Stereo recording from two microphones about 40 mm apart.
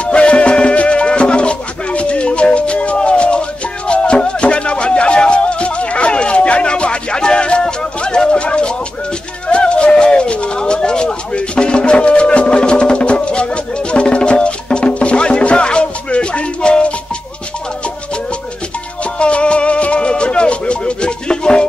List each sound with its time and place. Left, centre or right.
0.0 s music: left
9.5 s a sound: left
19.1 s music: left